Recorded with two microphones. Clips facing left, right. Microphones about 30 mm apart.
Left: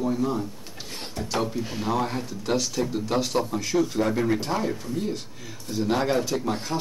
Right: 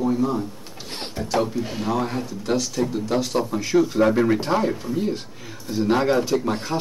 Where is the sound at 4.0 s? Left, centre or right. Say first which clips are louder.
Right 5 dB; right.